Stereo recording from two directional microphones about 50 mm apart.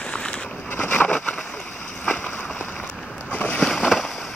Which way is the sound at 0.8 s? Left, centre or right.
Left.